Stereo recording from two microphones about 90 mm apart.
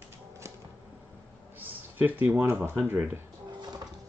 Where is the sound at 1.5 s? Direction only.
20° right (ahead or behind).